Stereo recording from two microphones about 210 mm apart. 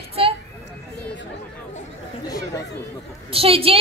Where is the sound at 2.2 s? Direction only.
20° left (ahead or behind).